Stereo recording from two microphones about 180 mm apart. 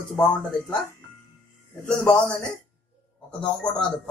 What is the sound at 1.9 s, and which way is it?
A man's voice, 5° left (ahead or behind).